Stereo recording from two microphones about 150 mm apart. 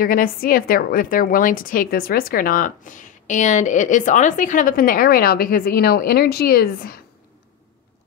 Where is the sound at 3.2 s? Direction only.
55° left (ahead or behind); by 6.9 s 90° left.